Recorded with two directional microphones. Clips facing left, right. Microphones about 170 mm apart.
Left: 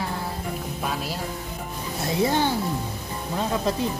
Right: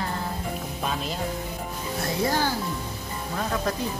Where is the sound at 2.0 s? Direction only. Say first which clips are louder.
Left 3 dB; 25° left (ahead or behind).